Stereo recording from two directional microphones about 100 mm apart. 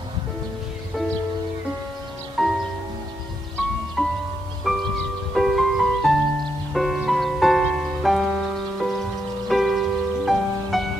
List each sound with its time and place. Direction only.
2.4 s music: 5° right (ahead or behind)
4.0 s music: centre (ahead or behind)